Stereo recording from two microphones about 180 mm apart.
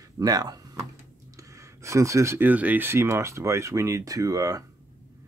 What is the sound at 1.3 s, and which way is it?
Speech, 15° right (ahead or behind).